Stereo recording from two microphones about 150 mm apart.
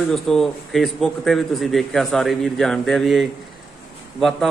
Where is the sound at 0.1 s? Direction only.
5° left (ahead or behind).